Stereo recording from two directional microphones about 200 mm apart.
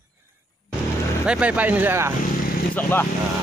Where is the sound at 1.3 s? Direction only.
5° right (ahead or behind).